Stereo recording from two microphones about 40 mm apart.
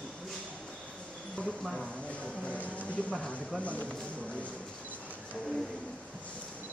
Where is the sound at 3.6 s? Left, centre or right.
Left.